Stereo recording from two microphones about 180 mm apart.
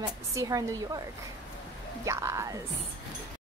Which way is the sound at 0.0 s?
20° right (ahead or behind).